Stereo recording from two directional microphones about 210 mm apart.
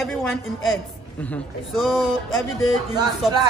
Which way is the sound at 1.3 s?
Centre (ahead or behind).